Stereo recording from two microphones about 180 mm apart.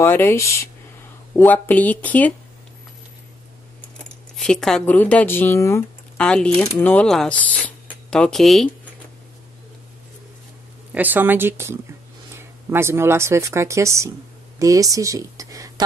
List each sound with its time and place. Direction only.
0.0 s speech: 15° left (ahead or behind)
4.4 s speech: 5° left (ahead or behind)
10.9 s a woman's voice: 10° right (ahead or behind)